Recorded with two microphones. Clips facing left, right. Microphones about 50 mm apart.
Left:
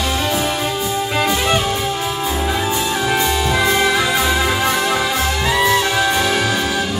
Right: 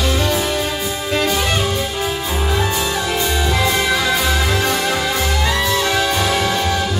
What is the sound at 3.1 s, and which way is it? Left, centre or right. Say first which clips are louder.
Music: left 2 dB; centre.